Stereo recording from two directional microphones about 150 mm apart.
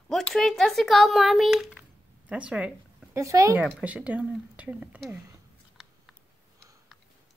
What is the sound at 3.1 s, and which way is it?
Speech, 20° right (ahead or behind).